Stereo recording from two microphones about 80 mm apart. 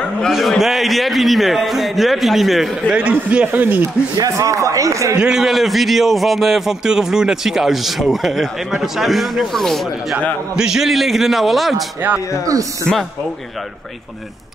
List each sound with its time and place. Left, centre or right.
0.3 s a man's voice: centre
2.9 s speech: centre
4.2 s speech: right
5.1 s a man's voice: centre
10.5 s a man's voice: centre